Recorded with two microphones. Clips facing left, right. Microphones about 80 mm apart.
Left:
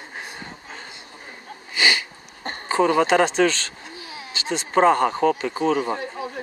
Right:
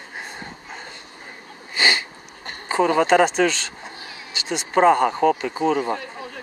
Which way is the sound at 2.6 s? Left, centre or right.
Centre.